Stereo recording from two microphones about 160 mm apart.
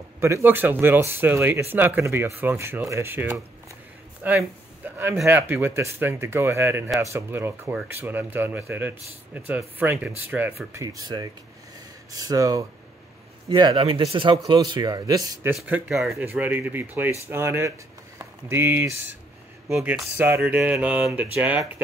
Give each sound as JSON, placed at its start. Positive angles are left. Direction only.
{"t": 0.2, "sound": "speech", "side_deg": -15}
{"t": 4.2, "sound": "a sound", "side_deg": -10}
{"t": 5.2, "sound": "speech", "side_deg": -15}
{"t": 15.7, "sound": "speech", "side_deg": 0}